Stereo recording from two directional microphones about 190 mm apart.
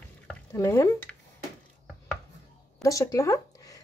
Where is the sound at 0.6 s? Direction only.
15° left (ahead or behind).